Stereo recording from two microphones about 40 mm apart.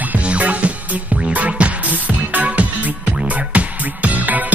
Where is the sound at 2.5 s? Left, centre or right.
Right.